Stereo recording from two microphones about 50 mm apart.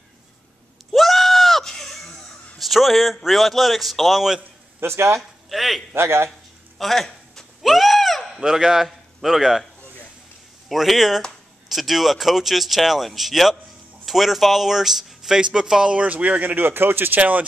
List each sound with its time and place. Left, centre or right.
0.9 s goat: centre
4.7 s speech: right
5.5 s speech: centre
5.9 s speech: right
6.8 s a sound: centre
8.4 s speech: centre
10.7 s speech: centre
16.1 s speech: right
17.2 s speech: right